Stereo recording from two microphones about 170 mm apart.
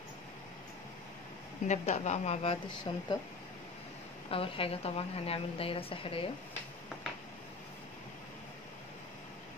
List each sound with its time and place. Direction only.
1.7 s a woman's voice: 40° left (ahead or behind)
4.3 s a woman's voice: 35° left (ahead or behind)